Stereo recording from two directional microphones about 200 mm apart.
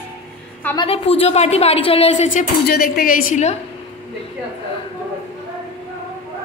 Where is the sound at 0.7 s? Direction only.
30° left (ahead or behind).